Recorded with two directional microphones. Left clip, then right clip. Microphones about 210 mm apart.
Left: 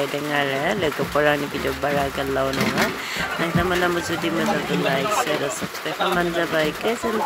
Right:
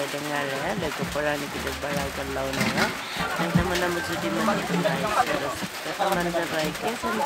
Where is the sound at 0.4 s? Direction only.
20° left (ahead or behind).